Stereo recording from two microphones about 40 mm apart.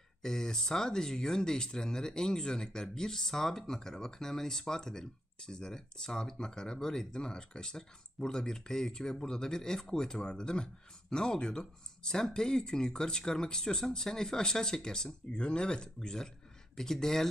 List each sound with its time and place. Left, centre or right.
0.2 s speech: centre